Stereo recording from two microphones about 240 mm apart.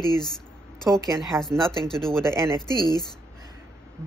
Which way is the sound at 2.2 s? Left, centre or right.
Centre.